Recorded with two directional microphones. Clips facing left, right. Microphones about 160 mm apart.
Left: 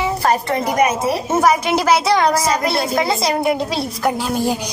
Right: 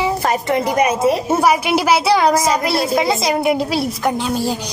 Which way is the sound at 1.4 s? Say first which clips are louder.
Left 1 dB; 10° right (ahead or behind).